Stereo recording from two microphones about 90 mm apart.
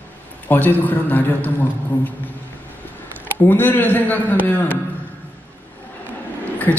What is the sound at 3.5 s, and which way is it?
A man's voice, 20° left (ahead or behind).